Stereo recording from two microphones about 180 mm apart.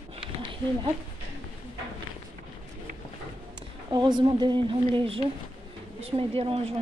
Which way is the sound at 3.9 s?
25° right (ahead or behind).